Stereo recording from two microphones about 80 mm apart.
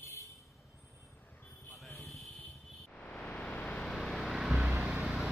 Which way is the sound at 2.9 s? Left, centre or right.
Centre.